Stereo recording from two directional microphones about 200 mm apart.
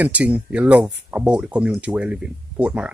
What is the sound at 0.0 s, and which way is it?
Speech, 5° right (ahead or behind).